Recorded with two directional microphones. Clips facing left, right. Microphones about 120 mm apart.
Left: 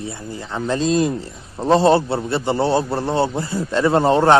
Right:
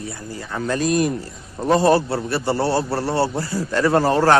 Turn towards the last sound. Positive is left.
turn(degrees=20)  # may be behind; listen again after turning